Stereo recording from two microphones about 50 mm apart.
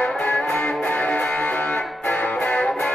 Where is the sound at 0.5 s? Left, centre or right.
Left.